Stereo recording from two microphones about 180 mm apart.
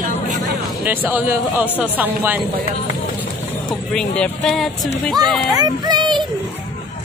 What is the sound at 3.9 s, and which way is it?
Speech, 5° left (ahead or behind).